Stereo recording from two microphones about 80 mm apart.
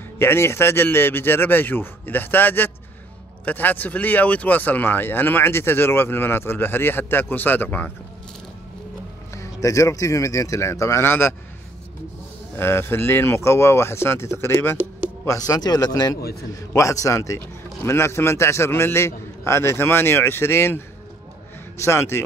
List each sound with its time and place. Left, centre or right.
0.2 s speech: left
9.3 s a man's voice: left
12.5 s a man's voice: left
15.2 s a man's voice: left
21.8 s a man's voice: left